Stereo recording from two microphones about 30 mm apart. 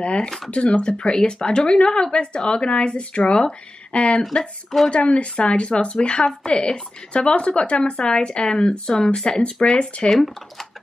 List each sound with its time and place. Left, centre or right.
0.7 s speech: left
4.4 s speech: centre
4.9 s speech: left
6.2 s speech: left